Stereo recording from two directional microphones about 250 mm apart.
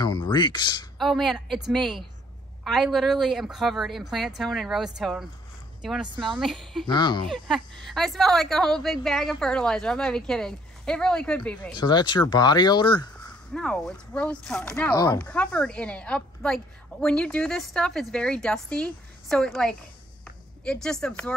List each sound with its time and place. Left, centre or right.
0.0 s speech: centre
0.9 s speech: centre
6.1 s speech: centre
6.4 s speech: centre
6.9 s speech: centre
7.2 s speech: centre
11.7 s speech: centre
13.5 s speech: centre